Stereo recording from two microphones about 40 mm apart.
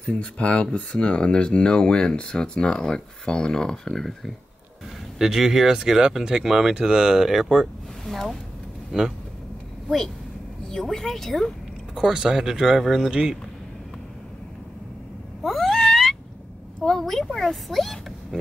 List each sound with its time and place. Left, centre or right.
0.0 s speech: left
5.2 s speech: centre
8.1 s speech: centre
9.8 s a woman's voice: centre
11.9 s speech: centre
15.4 s cat: centre
16.8 s speech: centre